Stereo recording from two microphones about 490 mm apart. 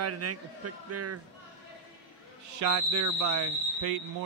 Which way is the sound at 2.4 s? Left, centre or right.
Right.